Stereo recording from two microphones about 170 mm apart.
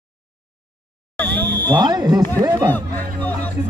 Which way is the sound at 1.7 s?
25° right (ahead or behind).